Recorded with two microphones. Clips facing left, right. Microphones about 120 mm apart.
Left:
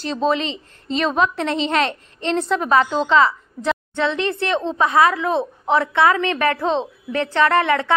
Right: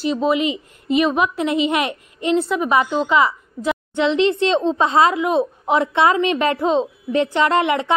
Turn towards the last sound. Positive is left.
turn(degrees=-15)  # may be behind; listen again after turning